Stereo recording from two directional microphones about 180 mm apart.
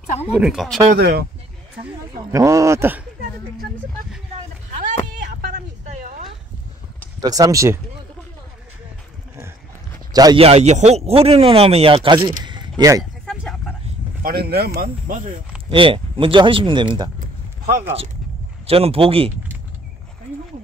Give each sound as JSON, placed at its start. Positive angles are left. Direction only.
{"t": 0.0, "sound": "speech", "side_deg": 40}
{"t": 0.3, "sound": "speech", "side_deg": -5}
{"t": 0.9, "sound": "speech", "side_deg": -65}
{"t": 2.3, "sound": "speech", "side_deg": -15}
{"t": 4.6, "sound": "a sound", "side_deg": -45}
{"t": 7.2, "sound": "speech", "side_deg": -20}
{"t": 10.1, "sound": "speech", "side_deg": -20}
{"t": 10.4, "sound": "speech", "side_deg": -35}
{"t": 12.2, "sound": "a sound", "side_deg": -25}
{"t": 13.2, "sound": "vehicle", "side_deg": 0}
{"t": 14.2, "sound": "speech", "side_deg": -60}
{"t": 15.7, "sound": "speech", "side_deg": -30}
{"t": 18.7, "sound": "speech", "side_deg": -35}